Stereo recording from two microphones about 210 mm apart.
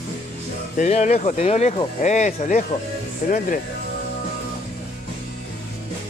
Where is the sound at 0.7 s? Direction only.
35° left (ahead or behind).